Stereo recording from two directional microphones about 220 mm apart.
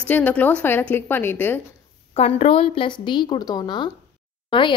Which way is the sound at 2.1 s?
30° left (ahead or behind).